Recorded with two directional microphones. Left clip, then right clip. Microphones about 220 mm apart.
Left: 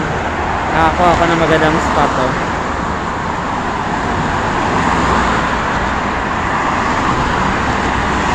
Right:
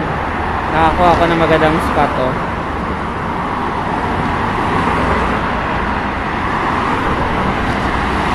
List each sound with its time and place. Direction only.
0.7 s speech: centre (ahead or behind)